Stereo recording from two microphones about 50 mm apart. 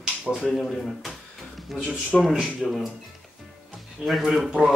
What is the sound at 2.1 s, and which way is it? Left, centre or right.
Speech, centre.